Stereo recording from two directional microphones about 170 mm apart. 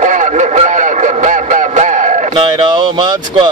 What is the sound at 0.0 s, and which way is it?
Radio, 45° right (ahead or behind).